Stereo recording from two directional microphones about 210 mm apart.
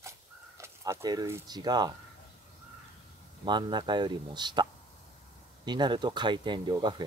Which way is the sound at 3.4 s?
20° right (ahead or behind).